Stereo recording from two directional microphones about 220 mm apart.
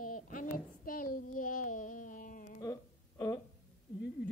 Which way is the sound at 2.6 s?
15° left (ahead or behind).